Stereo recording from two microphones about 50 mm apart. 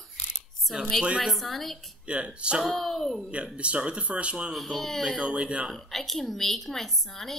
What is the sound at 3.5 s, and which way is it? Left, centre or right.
Speech, right.